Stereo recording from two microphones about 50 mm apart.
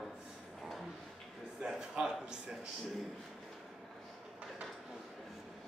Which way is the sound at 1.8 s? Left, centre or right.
Centre.